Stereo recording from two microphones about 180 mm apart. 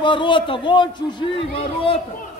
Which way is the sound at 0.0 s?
25° left (ahead or behind).